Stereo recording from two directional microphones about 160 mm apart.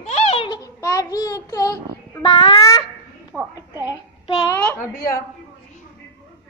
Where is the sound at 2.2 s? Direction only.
35° left (ahead or behind).